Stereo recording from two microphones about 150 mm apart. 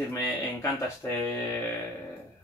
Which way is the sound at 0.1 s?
15° left (ahead or behind).